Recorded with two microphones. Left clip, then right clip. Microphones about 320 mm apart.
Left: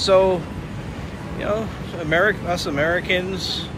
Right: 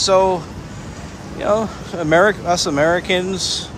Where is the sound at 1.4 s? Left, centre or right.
Centre.